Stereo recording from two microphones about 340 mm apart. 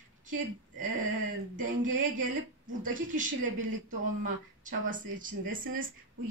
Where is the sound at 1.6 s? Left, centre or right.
Right.